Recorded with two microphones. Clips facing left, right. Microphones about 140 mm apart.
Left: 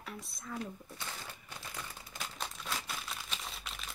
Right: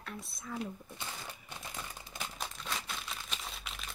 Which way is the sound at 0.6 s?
15° right (ahead or behind).